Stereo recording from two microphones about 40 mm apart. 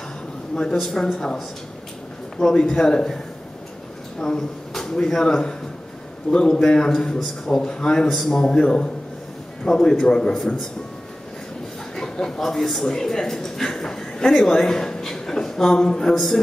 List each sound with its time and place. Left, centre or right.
0.5 s a man's voice: centre
2.3 s a man's voice: centre
4.2 s a man's voice: centre
9.7 s a man's voice: centre
11.9 s a man's voice: centre